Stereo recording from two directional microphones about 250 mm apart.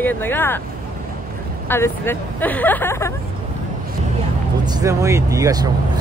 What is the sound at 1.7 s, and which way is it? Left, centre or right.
Speech, centre.